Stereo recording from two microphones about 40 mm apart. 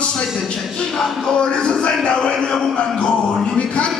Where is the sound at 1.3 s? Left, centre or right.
Left.